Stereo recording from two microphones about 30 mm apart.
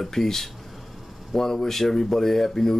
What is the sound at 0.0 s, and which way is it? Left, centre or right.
Speech, centre.